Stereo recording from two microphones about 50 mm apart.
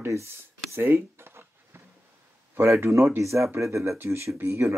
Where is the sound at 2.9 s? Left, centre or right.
Right.